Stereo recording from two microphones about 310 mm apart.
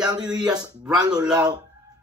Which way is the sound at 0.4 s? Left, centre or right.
Centre.